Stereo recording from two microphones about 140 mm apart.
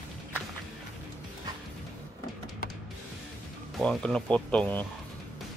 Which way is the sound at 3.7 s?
5° left (ahead or behind).